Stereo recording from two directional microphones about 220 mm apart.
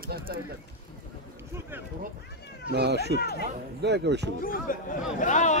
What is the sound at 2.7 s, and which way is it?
Speech, 50° right (ahead or behind).